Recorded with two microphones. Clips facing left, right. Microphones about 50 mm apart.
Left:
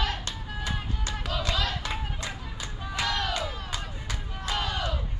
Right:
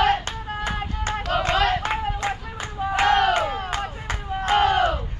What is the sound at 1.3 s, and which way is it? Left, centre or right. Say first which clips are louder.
Clapping: right 10 dB; right.